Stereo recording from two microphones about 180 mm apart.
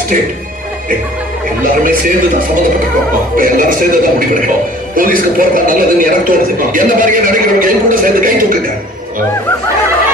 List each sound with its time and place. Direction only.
1.6 s a man's voice: 50° right (ahead or behind)